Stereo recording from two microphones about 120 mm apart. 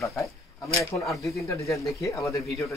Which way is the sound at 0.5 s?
25° left (ahead or behind).